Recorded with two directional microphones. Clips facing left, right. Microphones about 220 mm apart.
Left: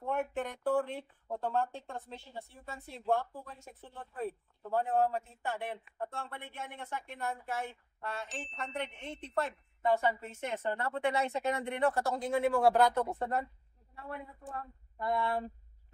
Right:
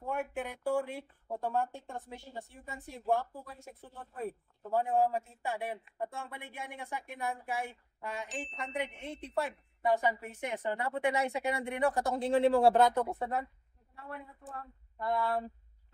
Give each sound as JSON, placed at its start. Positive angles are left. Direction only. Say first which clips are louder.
{"t": 0.0, "sound": "speech", "louder": "left 2 dB", "side_deg": -5}
{"t": 12.2, "sound": "speech", "louder": "right 5 dB", "side_deg": -30}
{"t": 13.1, "sound": "speech", "louder": "left 1 dB", "side_deg": -5}
{"t": 15.0, "sound": "speech", "louder": "even", "side_deg": 0}